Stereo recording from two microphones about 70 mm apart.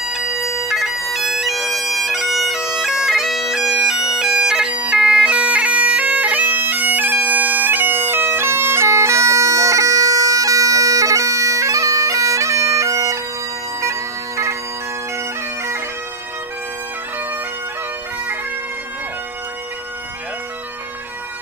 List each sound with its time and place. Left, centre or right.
0.0 s bagpipes: centre; by 15.8 s right